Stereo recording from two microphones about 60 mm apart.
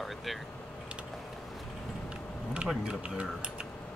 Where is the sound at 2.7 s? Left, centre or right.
Centre.